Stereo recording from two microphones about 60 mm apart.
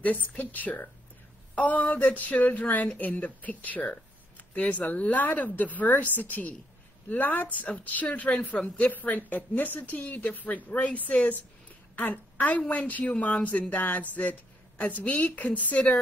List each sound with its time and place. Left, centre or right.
0.0 s a woman's voice: left